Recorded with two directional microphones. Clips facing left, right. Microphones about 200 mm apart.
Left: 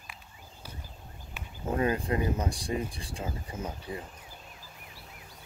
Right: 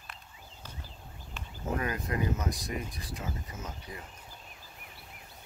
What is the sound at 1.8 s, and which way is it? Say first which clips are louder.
Speech: left 7 dB; 30° left (ahead or behind).